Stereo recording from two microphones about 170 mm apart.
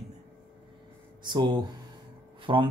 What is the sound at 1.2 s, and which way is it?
Speech, 25° right (ahead or behind).